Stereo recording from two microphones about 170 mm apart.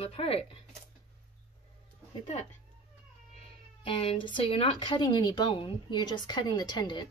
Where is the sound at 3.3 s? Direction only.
35° left (ahead or behind).